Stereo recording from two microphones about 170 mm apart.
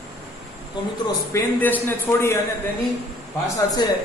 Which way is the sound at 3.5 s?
20° left (ahead or behind).